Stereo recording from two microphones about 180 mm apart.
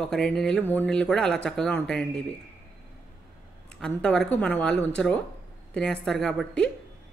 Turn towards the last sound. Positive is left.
turn(degrees=5)  # may be behind; listen again after turning